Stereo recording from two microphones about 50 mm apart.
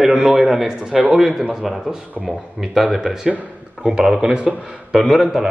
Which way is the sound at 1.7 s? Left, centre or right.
Centre.